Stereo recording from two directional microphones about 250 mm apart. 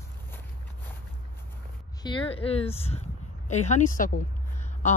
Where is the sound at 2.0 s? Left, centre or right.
Left.